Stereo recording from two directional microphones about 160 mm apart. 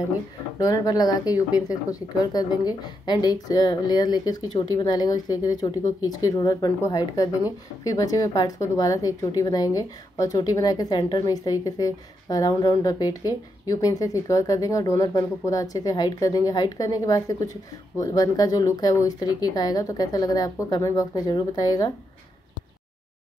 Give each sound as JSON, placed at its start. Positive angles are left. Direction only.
{"t": 0.6, "sound": "speech", "side_deg": 25}